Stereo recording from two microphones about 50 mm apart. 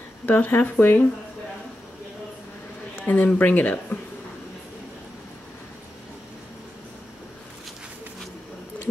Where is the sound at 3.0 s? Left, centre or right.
Left.